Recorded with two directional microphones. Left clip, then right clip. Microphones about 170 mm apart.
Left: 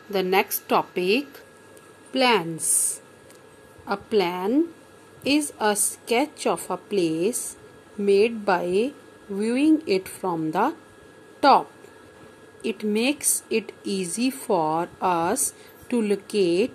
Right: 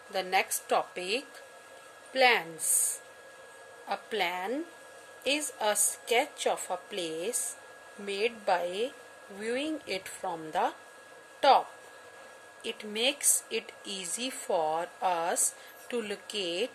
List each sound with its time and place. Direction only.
0.1 s a woman's voice: 10° left (ahead or behind)
12.6 s speech: 20° left (ahead or behind)